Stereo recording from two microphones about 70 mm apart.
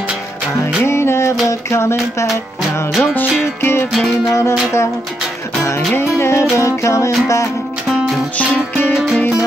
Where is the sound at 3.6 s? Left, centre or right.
Left.